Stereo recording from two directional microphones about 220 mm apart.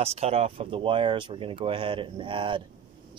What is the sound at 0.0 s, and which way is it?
Speech, 30° right (ahead or behind).